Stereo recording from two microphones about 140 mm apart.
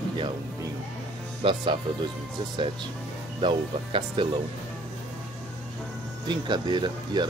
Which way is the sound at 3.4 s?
35° right (ahead or behind).